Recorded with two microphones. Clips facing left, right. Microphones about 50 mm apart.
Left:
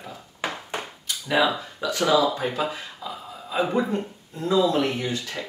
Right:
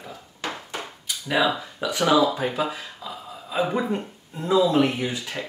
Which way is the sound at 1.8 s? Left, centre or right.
Right.